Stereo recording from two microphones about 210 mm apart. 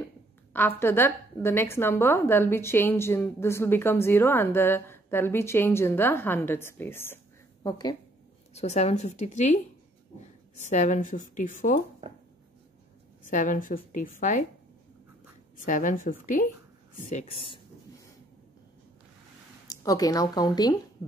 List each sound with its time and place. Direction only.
0.5 s a woman's voice: 10° left (ahead or behind)
8.5 s a woman's voice: 30° left (ahead or behind)
10.7 s a woman's voice: 35° left (ahead or behind)
13.3 s a woman's voice: 40° left (ahead or behind)
15.5 s a woman's voice: 40° left (ahead or behind)
17.1 s speech: 30° left (ahead or behind)
19.7 s a woman's voice: 15° left (ahead or behind)